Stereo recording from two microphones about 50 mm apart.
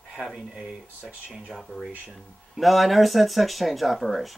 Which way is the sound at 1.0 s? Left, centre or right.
Right.